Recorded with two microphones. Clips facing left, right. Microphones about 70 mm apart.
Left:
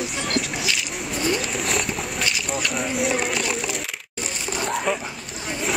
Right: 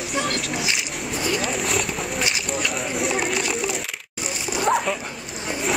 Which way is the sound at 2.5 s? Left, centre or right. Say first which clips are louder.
Left 1 dB; centre.